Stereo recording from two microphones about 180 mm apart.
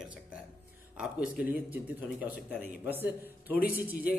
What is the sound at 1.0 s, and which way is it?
A man's voice, 10° right (ahead or behind).